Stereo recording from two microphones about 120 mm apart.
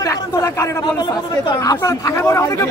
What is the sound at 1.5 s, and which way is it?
Speech, 30° left (ahead or behind).